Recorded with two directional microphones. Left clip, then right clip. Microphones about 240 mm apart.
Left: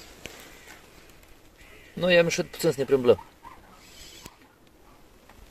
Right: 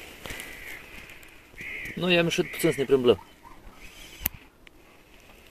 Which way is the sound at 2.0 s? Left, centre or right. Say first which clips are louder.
Left 3 dB; right.